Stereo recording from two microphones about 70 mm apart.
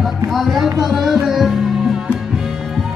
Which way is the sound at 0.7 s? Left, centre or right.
Right.